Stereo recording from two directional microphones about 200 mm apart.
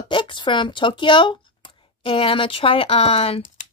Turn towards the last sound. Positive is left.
turn(degrees=30)  # may be behind; listen again after turning